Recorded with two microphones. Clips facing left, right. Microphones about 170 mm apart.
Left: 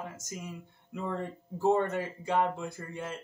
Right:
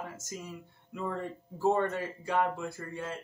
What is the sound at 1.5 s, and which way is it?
Speech, 20° left (ahead or behind).